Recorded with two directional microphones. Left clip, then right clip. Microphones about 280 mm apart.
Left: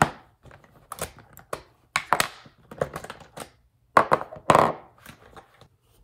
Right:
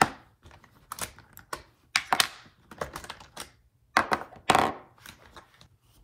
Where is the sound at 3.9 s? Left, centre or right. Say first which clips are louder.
Left 6 dB; right.